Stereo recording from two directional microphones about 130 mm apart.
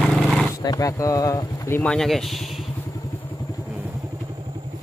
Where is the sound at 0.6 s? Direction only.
25° left (ahead or behind).